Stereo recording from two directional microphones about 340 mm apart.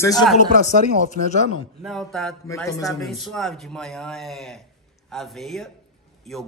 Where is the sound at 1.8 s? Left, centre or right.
Centre.